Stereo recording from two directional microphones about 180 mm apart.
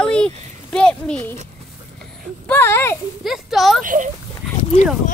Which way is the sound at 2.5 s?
15° left (ahead or behind).